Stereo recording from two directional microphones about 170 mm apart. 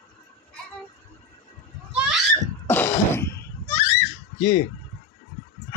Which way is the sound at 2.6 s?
10° left (ahead or behind).